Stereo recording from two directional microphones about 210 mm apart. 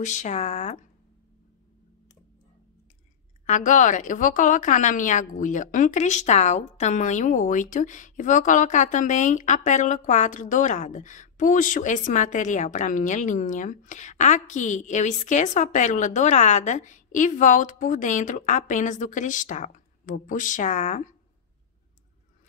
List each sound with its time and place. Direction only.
0.0 s a woman's voice: 35° left (ahead or behind)
3.4 s a woman's voice: 35° left (ahead or behind)